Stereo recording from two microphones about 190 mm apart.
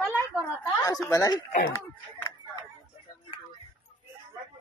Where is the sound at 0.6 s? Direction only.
15° left (ahead or behind).